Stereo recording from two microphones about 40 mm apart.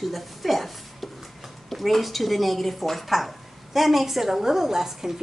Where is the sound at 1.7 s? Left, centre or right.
Centre.